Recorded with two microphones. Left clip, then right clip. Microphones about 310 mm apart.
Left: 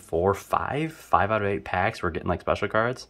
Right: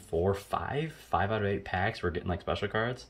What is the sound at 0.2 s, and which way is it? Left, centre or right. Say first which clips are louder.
Speech: left 7 dB; centre.